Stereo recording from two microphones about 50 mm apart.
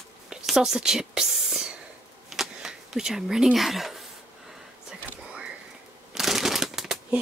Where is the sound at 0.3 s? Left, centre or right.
Centre.